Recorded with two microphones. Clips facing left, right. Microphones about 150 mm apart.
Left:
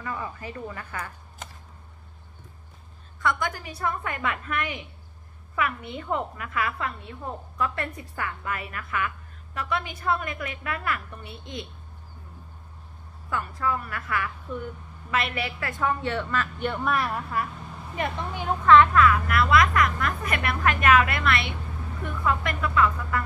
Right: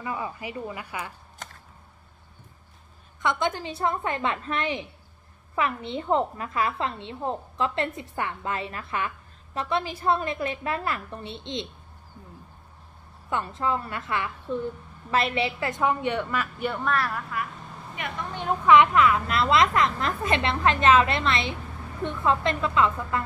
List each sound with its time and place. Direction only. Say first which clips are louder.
0.0 s a woman's voice: right 2 dB; 15° right (ahead or behind)
3.2 s a woman's voice: right 2 dB; 20° right (ahead or behind)
13.3 s a woman's voice: right 1 dB; 25° right (ahead or behind); by 16.8 s 5° right (ahead or behind)
16.8 s speech: even; 15° left (ahead or behind)
17.3 s a woman's voice: left 3 dB; 35° left (ahead or behind)
18.3 s a woman's voice: right 1 dB; 5° left (ahead or behind)
18.7 s a woman's voice: left 1 dB; 15° right (ahead or behind)